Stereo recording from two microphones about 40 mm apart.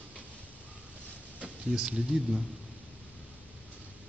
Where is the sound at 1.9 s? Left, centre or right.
Right.